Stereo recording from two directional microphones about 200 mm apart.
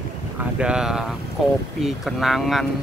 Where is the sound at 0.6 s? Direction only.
5° right (ahead or behind).